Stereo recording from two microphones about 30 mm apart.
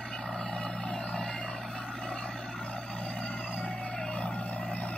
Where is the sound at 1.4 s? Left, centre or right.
Left.